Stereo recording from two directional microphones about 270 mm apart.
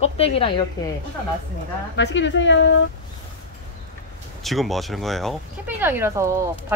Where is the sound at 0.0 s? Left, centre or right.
Left.